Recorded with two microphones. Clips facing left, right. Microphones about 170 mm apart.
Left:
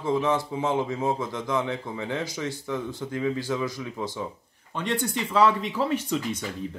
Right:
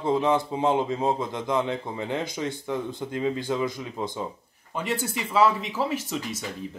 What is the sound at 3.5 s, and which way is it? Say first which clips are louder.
Speech: right 1 dB; 20° right (ahead or behind).